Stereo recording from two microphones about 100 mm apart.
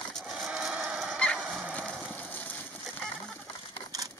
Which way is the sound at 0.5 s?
10° right (ahead or behind).